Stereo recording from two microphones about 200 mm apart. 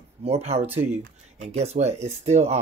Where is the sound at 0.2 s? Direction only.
30° right (ahead or behind).